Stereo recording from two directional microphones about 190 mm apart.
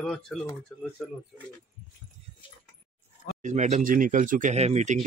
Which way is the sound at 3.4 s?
40° right (ahead or behind).